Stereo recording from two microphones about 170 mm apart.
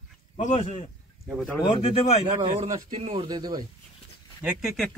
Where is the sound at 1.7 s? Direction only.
35° left (ahead or behind).